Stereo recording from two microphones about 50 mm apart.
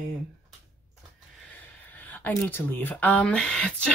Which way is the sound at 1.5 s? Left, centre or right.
Left.